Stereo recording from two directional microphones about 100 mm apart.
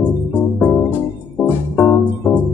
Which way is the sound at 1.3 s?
15° left (ahead or behind).